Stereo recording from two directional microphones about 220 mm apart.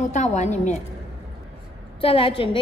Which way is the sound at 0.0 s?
35° left (ahead or behind).